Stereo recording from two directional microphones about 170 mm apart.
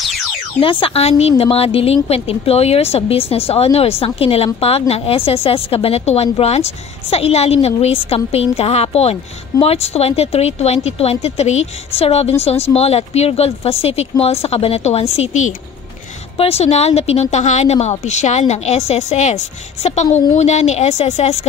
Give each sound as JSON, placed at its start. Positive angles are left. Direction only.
{"t": 0.6, "sound": "a woman's voice", "side_deg": 30}